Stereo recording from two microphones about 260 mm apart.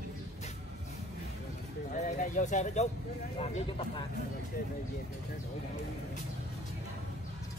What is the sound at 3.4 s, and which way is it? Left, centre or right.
Speech, centre.